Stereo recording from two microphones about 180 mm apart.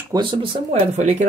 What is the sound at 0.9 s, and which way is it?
Speech, 40° right (ahead or behind).